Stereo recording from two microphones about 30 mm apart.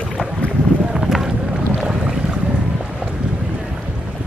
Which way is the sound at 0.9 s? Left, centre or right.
Centre.